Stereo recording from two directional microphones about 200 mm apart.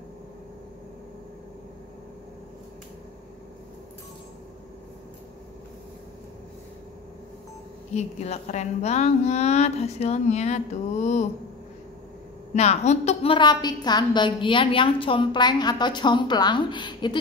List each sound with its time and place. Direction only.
7.9 s speech: 35° left (ahead or behind)
12.5 s a woman's voice: 35° left (ahead or behind)